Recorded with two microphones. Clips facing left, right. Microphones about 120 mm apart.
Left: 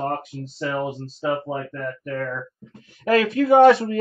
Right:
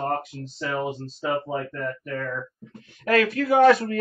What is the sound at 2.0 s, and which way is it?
Speech, 45° left (ahead or behind).